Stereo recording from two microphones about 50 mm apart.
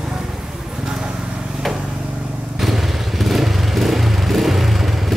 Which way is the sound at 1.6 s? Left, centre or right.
Centre.